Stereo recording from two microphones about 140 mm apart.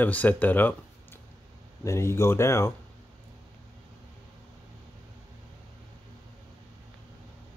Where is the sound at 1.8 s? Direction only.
20° left (ahead or behind).